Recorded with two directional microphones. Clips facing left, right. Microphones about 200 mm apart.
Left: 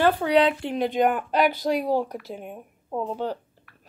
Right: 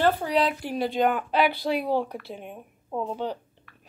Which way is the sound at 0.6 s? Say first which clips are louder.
Left 2 dB; 25° left (ahead or behind).